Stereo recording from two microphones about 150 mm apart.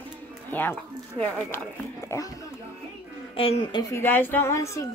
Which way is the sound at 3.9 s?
15° left (ahead or behind).